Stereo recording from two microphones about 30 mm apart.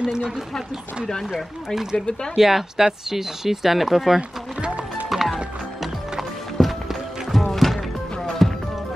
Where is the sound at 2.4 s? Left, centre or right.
Centre.